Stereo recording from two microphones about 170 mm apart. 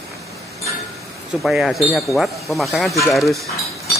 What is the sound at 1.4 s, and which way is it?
Speech, centre (ahead or behind).